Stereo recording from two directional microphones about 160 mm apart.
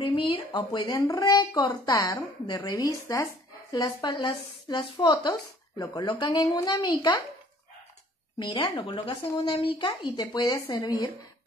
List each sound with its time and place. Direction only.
0.0 s a woman's voice: 35° left (ahead or behind)
8.5 s a woman's voice: 30° left (ahead or behind)